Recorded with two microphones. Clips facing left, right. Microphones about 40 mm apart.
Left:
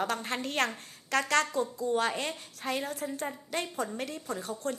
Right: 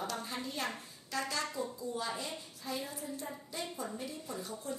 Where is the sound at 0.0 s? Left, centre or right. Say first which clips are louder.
Left 7 dB; left.